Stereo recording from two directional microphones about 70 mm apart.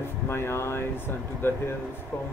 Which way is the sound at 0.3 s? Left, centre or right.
Left.